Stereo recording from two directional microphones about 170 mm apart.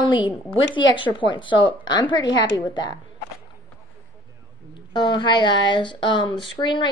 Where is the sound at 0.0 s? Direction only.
25° left (ahead or behind).